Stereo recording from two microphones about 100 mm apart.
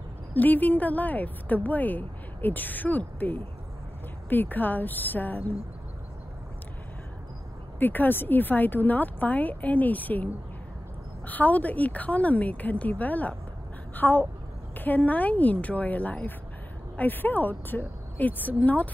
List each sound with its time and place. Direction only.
0.3 s a woman's voice: 15° left (ahead or behind)
7.8 s a woman's voice: 20° left (ahead or behind)